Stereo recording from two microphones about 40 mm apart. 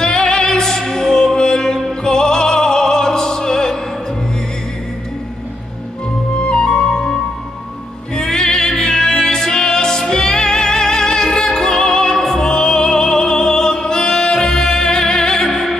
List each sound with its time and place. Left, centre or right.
0.0 s music: centre
2.0 s opera: centre
6.4 s music: left